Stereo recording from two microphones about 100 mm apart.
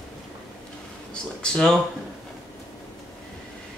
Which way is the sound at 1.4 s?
10° left (ahead or behind).